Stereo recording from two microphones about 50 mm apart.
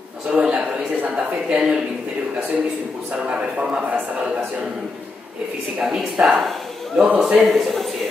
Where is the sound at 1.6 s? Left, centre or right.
Centre.